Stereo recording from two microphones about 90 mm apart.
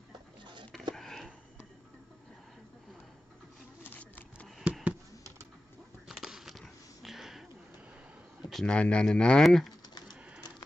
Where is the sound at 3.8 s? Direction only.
20° left (ahead or behind).